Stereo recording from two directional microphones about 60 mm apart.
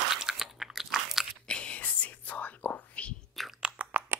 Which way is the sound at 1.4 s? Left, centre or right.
Centre.